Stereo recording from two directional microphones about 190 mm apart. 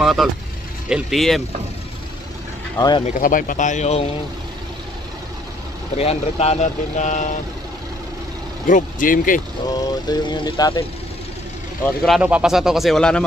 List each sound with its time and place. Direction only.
0.0 s speech: centre (ahead or behind)
3.1 s speech: 45° left (ahead or behind)
5.9 s speech: 35° left (ahead or behind)
8.6 s speech: 45° left (ahead or behind)
9.7 s vehicle: 20° left (ahead or behind)
11.8 s speech: centre (ahead or behind)